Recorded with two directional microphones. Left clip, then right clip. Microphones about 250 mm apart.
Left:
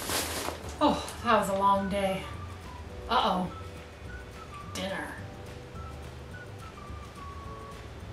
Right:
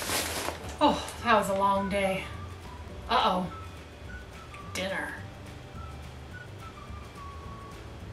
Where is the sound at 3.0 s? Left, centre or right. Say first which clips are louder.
Right 1 dB; centre.